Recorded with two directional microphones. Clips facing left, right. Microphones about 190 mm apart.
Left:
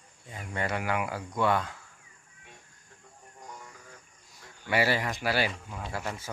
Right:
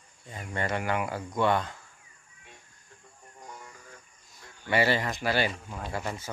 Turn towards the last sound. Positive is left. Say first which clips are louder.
# right 2 dB
turn(degrees=0)  # may be behind; listen again after turning